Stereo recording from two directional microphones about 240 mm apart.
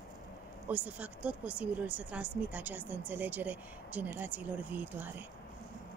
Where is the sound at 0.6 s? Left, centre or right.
Centre.